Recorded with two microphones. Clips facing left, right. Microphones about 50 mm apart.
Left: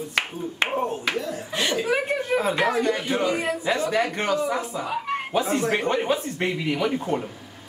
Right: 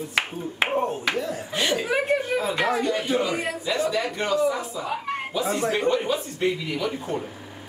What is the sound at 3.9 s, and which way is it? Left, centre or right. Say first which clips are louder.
Speech: left 1 dB; left.